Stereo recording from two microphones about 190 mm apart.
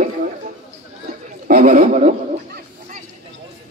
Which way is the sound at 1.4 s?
45° right (ahead or behind).